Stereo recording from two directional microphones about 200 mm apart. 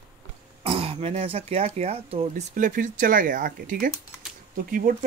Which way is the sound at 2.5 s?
40° right (ahead or behind).